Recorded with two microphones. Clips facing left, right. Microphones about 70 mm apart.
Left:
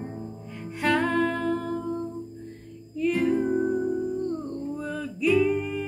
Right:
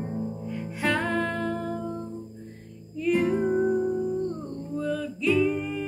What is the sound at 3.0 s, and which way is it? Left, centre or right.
Music, centre.